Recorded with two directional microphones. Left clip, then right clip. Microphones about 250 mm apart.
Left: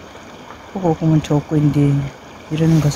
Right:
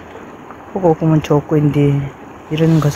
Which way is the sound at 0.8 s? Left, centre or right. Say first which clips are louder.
Right 4 dB; centre.